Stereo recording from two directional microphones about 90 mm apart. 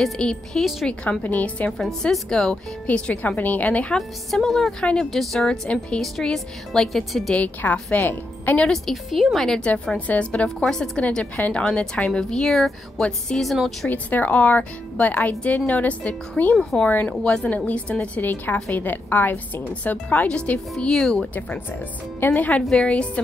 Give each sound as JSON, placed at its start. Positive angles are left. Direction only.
{"t": 0.0, "sound": "a woman's voice", "side_deg": 5}
{"t": 1.2, "sound": "a woman's voice", "side_deg": 15}
{"t": 1.7, "sound": "a woman's voice", "side_deg": 5}
{"t": 3.9, "sound": "a woman's voice", "side_deg": 5}
{"t": 7.3, "sound": "speech", "side_deg": 15}
{"t": 8.6, "sound": "a woman's voice", "side_deg": 5}
{"t": 9.7, "sound": "a woman's voice", "side_deg": 15}
{"t": 13.8, "sound": "a woman's voice", "side_deg": 20}
{"t": 22.2, "sound": "a woman's voice", "side_deg": 20}